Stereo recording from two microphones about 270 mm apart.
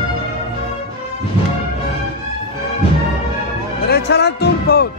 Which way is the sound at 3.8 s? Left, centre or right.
Left.